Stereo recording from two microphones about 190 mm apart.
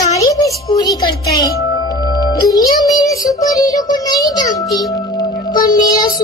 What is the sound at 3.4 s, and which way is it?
A child's voice, 20° left (ahead or behind).